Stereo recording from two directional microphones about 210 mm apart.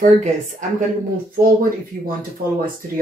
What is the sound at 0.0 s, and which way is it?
Speech, 35° right (ahead or behind).